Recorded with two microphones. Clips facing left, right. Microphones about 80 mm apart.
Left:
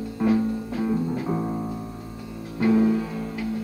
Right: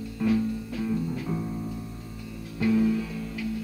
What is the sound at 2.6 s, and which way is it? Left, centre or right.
Music, left.